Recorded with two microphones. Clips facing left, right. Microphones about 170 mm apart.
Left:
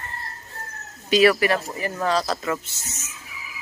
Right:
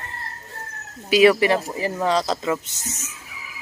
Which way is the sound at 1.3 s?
25° right (ahead or behind).